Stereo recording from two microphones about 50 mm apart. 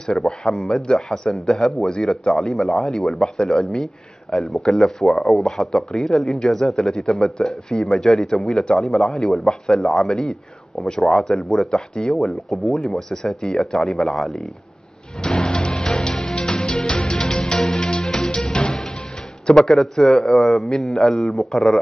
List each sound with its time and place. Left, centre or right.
0.0 s speech: centre
15.2 s music: centre
19.5 s a man's voice: centre
21.5 s speech: centre